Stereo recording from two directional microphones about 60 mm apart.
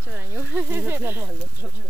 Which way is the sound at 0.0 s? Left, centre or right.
Right.